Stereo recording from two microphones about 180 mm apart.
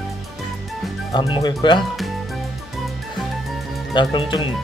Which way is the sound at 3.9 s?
25° left (ahead or behind).